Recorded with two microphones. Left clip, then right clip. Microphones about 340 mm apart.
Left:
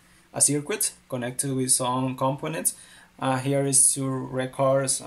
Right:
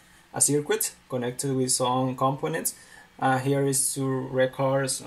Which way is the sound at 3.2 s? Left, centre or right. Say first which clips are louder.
Right 1 dB; centre.